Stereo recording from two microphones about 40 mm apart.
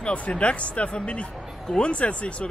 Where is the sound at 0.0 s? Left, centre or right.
Left.